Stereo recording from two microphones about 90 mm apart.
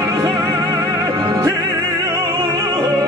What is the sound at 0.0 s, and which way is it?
Music, 35° right (ahead or behind).